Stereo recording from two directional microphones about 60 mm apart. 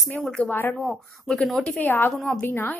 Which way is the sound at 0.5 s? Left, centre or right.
Left.